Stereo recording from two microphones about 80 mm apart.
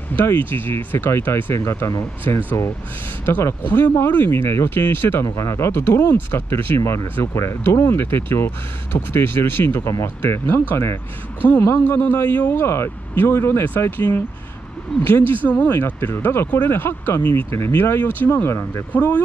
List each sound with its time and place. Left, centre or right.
0.1 s speech: left
5.2 s speech: left
18.9 s speech: centre